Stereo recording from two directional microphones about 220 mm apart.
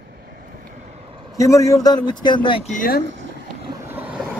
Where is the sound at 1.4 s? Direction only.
15° left (ahead or behind); by 3.0 s 35° left (ahead or behind).